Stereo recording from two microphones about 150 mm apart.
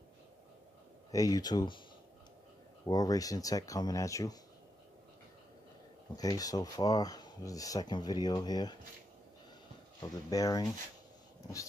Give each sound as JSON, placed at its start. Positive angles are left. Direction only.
{"t": 1.1, "sound": "speech", "side_deg": 25}
{"t": 2.8, "sound": "speech", "side_deg": 25}
{"t": 6.1, "sound": "speech", "side_deg": 25}
{"t": 10.3, "sound": "speech", "side_deg": 25}